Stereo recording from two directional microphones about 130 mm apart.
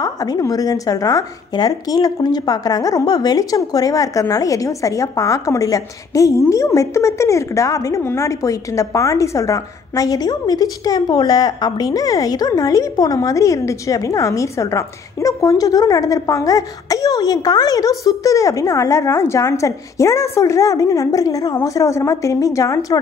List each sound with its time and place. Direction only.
0.0 s a woman's voice: 25° left (ahead or behind)